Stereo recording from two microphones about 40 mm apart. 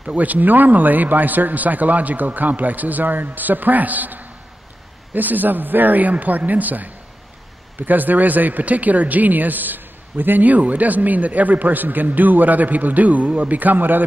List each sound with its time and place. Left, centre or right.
0.1 s speech: right